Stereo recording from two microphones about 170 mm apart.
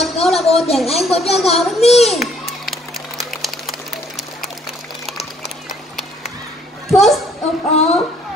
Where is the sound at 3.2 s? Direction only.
Centre (ahead or behind).